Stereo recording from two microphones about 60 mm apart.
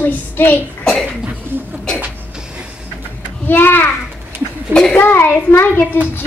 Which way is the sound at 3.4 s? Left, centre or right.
Left.